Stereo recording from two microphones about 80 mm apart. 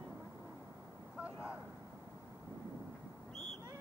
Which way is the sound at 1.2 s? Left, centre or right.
Centre.